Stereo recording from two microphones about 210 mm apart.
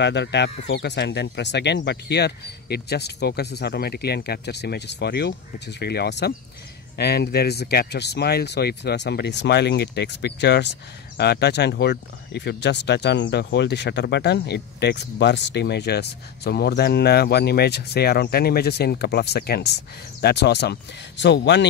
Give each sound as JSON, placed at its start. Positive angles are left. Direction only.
{"t": 0.0, "sound": "speech", "side_deg": 55}